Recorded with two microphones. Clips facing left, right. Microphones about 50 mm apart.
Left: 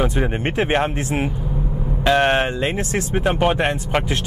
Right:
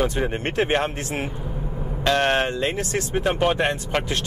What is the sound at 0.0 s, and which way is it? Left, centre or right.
Speech, centre.